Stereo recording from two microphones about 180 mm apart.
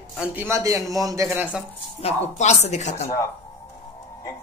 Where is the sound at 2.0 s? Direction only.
40° left (ahead or behind).